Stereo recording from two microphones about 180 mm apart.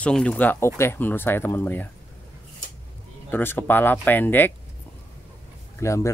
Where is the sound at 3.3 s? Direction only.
10° left (ahead or behind).